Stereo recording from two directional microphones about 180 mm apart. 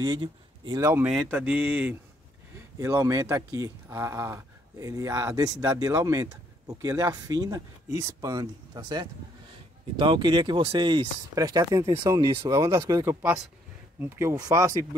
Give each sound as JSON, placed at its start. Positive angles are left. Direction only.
{"t": 0.0, "sound": "speech", "side_deg": -25}
{"t": 0.7, "sound": "speech", "side_deg": -10}